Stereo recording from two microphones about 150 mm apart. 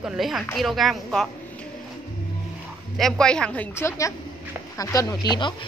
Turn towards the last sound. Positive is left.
turn(degrees=30)  # may be behind; listen again after turning